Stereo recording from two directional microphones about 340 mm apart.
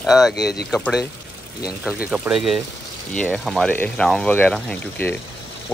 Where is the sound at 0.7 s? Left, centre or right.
Centre.